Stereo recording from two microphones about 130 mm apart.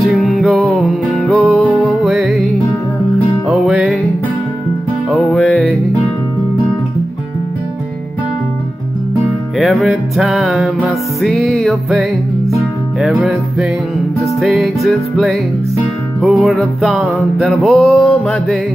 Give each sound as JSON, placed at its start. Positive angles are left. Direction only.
{"t": 0.0, "sound": "music", "side_deg": 0}
{"t": 3.4, "sound": "music", "side_deg": -5}
{"t": 5.1, "sound": "music", "side_deg": 0}
{"t": 9.6, "sound": "music", "side_deg": 0}